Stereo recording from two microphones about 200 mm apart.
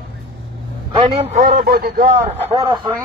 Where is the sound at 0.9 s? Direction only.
30° right (ahead or behind).